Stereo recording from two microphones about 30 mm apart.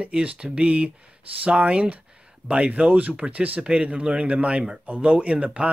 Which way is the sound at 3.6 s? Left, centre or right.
Right.